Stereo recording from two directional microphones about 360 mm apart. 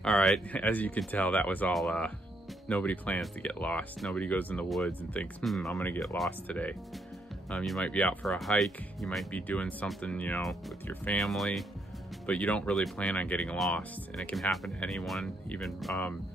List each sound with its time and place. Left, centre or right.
0.0 s speech: centre